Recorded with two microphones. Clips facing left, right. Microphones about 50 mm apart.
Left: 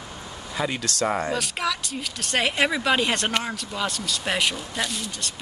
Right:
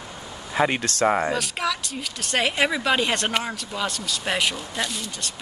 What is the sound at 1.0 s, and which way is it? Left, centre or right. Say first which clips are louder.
Speech: right 4 dB; centre.